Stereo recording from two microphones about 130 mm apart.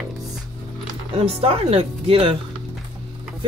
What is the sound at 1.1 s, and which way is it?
Speech, 50° right (ahead or behind).